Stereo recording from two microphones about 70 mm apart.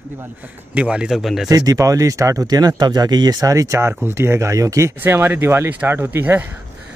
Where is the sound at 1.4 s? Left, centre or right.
Right.